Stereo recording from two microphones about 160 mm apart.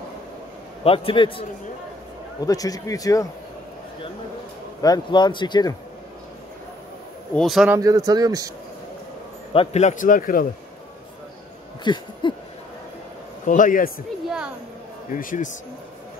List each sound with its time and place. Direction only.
0.8 s a man's voice: 35° left (ahead or behind)
2.4 s speech: 20° left (ahead or behind)
4.8 s speech: 25° left (ahead or behind)
7.3 s speech: centre (ahead or behind)
7.7 s speech: 20° right (ahead or behind)
9.5 s a man's voice: 40° left (ahead or behind); by 10.4 s 60° left (ahead or behind)
11.8 s a sound: 30° left (ahead or behind)
13.5 s a man's voice: 55° left (ahead or behind)
15.1 s a man's voice: 55° left (ahead or behind)